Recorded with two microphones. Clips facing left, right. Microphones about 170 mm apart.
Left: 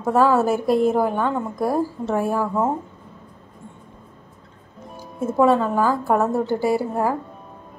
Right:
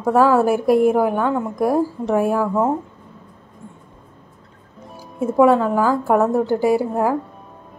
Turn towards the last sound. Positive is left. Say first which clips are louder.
# right 3 dB
turn(degrees=-15)  # may be behind; listen again after turning